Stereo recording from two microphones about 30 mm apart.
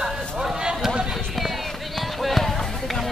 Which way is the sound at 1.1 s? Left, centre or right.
Centre.